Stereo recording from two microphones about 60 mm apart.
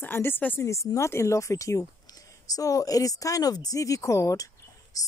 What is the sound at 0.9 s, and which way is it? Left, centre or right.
Speech, left.